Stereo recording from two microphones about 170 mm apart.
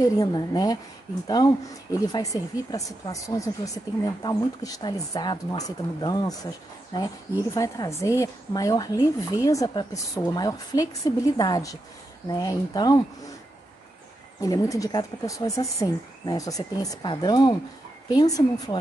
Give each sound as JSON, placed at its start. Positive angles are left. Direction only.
{"t": 0.2, "sound": "speech", "side_deg": 25}
{"t": 14.4, "sound": "speech", "side_deg": 20}